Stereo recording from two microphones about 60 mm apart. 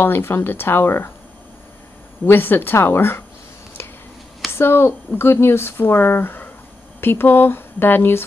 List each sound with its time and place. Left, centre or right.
0.0 s speech: left
2.2 s speech: left
4.6 s speech: left